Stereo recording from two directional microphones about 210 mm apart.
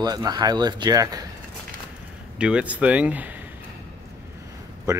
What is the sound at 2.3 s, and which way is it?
Speech, 5° right (ahead or behind).